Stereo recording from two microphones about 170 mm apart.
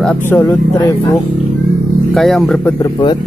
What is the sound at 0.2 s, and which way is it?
Speech, 15° left (ahead or behind).